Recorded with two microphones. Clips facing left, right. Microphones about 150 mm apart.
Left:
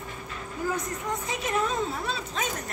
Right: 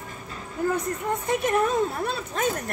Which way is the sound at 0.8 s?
60° right (ahead or behind).